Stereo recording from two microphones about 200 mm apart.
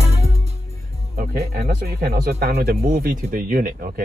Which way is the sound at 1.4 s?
50° right (ahead or behind).